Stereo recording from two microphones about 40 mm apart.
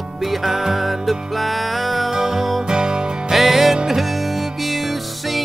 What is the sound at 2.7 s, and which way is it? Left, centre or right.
Music, centre.